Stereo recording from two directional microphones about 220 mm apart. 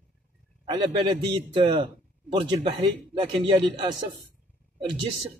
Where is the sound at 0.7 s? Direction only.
20° right (ahead or behind).